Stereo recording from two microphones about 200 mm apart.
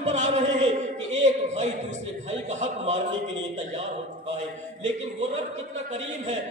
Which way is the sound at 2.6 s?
35° right (ahead or behind).